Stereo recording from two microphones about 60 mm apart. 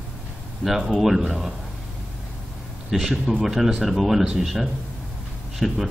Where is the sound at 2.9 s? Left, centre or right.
Centre.